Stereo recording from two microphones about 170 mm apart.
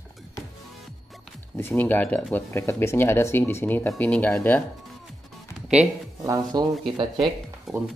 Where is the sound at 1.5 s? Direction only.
10° left (ahead or behind).